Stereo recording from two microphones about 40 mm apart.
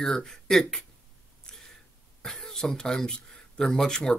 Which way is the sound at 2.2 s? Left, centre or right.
Centre.